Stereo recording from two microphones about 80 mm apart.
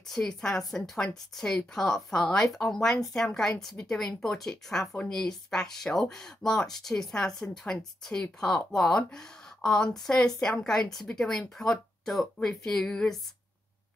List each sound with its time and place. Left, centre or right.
0.1 s speech: centre